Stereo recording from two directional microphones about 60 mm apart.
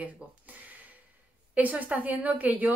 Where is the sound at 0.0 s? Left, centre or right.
Right.